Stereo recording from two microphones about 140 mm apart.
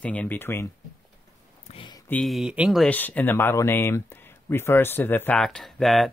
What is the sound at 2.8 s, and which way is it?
Speech, 10° left (ahead or behind).